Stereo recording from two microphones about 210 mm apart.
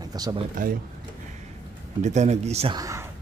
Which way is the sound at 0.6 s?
40° right (ahead or behind).